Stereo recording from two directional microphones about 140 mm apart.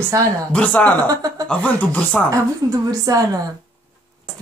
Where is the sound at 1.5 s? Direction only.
10° left (ahead or behind).